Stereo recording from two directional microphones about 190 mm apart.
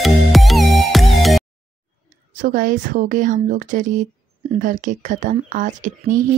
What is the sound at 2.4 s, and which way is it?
Speech, 45° right (ahead or behind).